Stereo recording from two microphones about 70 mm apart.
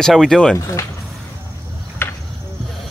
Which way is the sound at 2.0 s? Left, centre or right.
Left.